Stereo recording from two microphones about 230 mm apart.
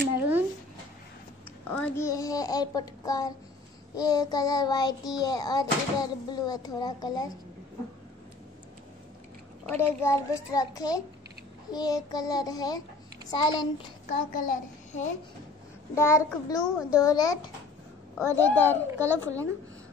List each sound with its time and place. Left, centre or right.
1.7 s child singing: centre
9.7 s child singing: centre
13.3 s a child's voice: centre
14.0 s a child's voice: left
15.9 s child singing: centre